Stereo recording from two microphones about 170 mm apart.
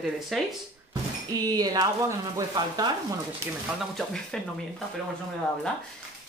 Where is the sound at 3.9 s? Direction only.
5° left (ahead or behind).